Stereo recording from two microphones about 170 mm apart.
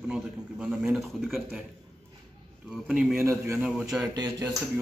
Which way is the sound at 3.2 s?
15° right (ahead or behind).